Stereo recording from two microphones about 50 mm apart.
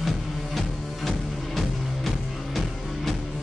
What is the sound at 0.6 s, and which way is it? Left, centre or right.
Music, centre.